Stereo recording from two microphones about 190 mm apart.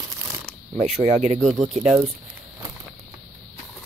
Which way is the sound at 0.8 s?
40° right (ahead or behind).